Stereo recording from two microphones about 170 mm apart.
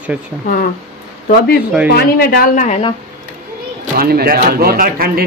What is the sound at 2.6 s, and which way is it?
Speech, 40° left (ahead or behind).